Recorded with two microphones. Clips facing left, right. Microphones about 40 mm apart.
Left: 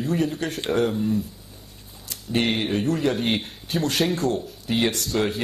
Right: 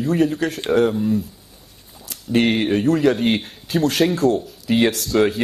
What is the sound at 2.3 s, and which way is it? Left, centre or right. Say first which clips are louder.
Speech: right 6 dB; right.